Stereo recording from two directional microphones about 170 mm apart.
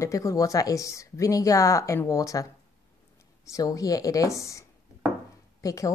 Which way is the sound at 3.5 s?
20° left (ahead or behind).